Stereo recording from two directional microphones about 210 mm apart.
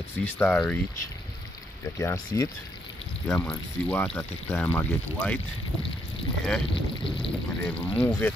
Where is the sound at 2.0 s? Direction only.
15° left (ahead or behind).